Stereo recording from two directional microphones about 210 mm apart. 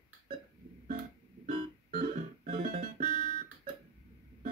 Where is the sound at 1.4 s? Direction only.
35° right (ahead or behind).